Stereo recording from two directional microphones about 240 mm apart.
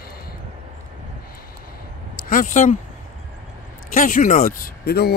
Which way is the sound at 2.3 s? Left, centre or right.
Left.